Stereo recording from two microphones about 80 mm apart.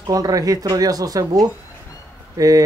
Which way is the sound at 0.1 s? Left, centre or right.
Right.